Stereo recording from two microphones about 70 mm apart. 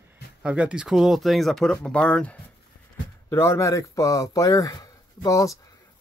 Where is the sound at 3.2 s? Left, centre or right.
Left.